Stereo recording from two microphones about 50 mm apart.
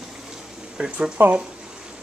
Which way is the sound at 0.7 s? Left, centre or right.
Right.